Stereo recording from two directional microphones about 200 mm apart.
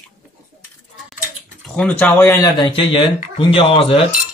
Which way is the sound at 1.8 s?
5° left (ahead or behind).